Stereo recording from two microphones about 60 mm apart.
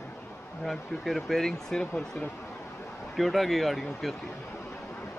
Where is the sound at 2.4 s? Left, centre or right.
Left.